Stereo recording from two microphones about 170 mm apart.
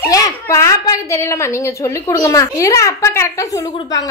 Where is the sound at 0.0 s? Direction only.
20° left (ahead or behind).